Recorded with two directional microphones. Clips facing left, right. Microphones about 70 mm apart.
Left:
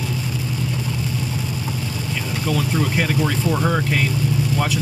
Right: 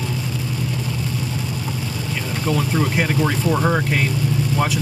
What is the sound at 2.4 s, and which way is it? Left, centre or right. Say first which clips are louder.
Speech: right 1 dB; centre.